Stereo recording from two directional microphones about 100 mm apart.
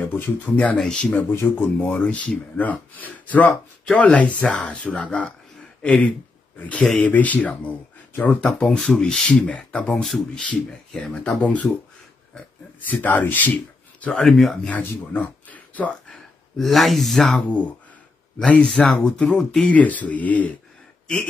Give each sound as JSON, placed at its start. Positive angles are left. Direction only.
{"t": 0.1, "sound": "speech", "side_deg": 15}
{"t": 1.3, "sound": "speech", "side_deg": 25}
{"t": 10.0, "sound": "speech", "side_deg": 0}
{"t": 10.4, "sound": "speech", "side_deg": 10}
{"t": 12.8, "sound": "speech", "side_deg": 15}
{"t": 14.0, "sound": "speech", "side_deg": 5}
{"t": 14.7, "sound": "speech", "side_deg": 15}